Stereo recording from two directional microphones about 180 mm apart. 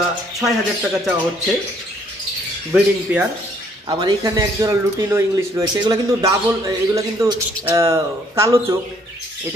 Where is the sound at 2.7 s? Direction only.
10° right (ahead or behind).